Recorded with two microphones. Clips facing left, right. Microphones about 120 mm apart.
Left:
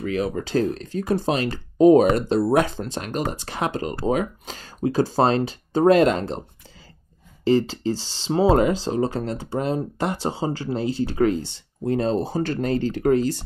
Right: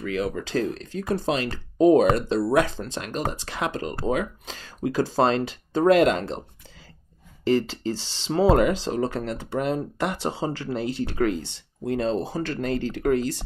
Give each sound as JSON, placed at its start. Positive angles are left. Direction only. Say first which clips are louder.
{"t": 0.0, "sound": "speech", "louder": "left 2 dB", "side_deg": 35}
{"t": 2.6, "sound": "speech", "louder": "left 2 dB", "side_deg": 20}
{"t": 2.9, "sound": "speech", "louder": "left 2 dB", "side_deg": 45}
{"t": 7.4, "sound": "speech", "louder": "left 3 dB", "side_deg": 30}